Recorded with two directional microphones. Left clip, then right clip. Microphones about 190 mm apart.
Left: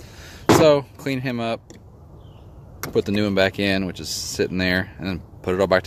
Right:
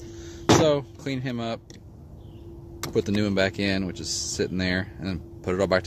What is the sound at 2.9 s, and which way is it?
Speech, 5° left (ahead or behind).